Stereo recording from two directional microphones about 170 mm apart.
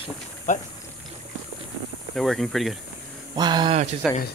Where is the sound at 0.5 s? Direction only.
45° left (ahead or behind).